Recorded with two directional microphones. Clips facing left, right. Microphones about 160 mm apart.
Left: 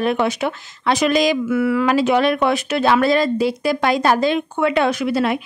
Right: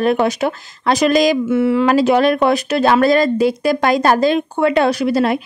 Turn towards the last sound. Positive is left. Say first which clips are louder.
# right 3 dB
turn(degrees=-40)  # may be behind; listen again after turning